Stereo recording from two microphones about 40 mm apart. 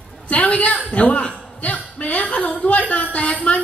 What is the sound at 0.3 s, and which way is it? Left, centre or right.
Speech, left.